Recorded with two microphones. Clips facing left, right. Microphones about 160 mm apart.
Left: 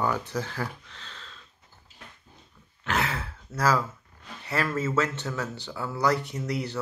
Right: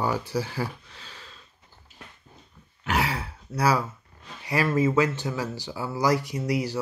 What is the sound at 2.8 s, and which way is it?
Throat clearing, 10° right (ahead or behind).